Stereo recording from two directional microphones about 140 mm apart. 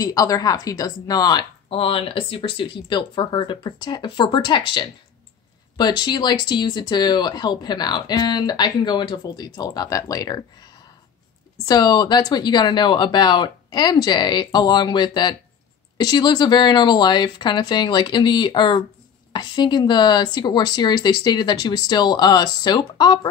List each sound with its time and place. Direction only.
0.0 s speech: 25° left (ahead or behind)
1.7 s speech: 40° left (ahead or behind)